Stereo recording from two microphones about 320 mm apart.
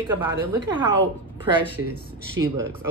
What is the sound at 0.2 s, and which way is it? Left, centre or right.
Speech, centre.